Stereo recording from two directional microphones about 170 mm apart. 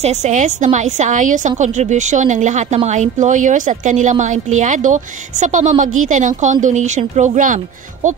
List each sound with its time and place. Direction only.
0.0 s speech: 40° right (ahead or behind)